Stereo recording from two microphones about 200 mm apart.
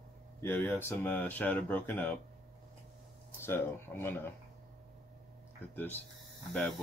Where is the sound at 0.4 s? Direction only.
10° left (ahead or behind).